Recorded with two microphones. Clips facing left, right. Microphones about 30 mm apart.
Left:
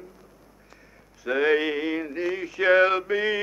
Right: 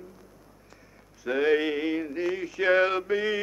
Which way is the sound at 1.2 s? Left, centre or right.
Centre.